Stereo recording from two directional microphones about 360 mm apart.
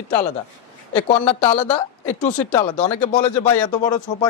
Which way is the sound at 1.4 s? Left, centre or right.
Centre.